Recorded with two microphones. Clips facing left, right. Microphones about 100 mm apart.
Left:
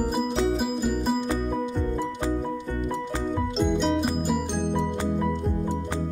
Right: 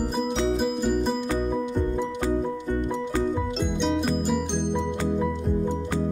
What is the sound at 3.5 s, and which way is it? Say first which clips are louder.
Music: left 2 dB; centre (ahead or behind).